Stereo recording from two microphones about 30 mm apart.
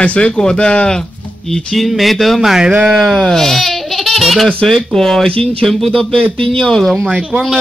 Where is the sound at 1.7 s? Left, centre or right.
Centre.